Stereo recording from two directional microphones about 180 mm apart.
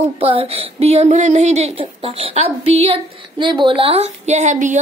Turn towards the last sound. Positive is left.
turn(degrees=-40)  # may be behind; listen again after turning